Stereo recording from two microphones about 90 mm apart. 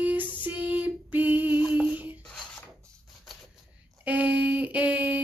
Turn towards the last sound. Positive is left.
turn(degrees=-15)  # may be behind; listen again after turning